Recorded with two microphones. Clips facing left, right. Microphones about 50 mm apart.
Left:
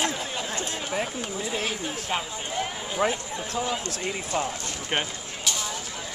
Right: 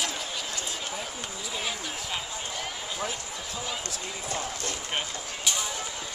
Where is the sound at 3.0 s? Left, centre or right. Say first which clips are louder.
Left 10 dB; left.